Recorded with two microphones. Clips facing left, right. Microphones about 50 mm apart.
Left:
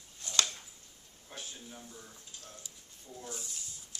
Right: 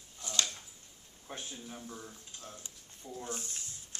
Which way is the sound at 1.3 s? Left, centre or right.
Right.